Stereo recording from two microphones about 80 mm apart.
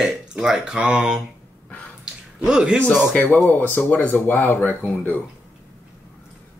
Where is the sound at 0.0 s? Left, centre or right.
Centre.